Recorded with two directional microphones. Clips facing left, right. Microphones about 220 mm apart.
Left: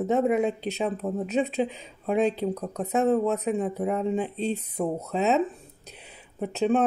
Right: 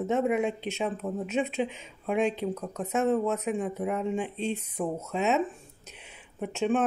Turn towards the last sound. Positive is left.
turn(degrees=35)  # may be behind; listen again after turning